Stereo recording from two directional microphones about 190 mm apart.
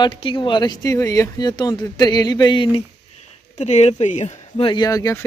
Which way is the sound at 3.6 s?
35° left (ahead or behind).